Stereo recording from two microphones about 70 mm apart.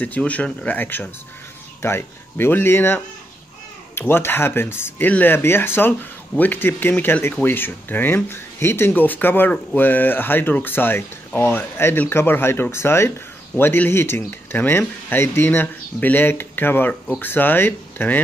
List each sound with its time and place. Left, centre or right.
0.0 s speech: left
4.1 s speech: left